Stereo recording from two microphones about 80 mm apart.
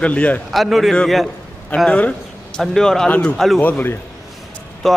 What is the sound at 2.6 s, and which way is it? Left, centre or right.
Speech, centre.